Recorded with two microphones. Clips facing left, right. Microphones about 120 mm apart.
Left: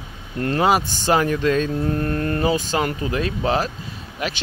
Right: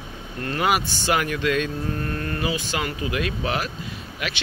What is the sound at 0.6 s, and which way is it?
Speech, 30° left (ahead or behind).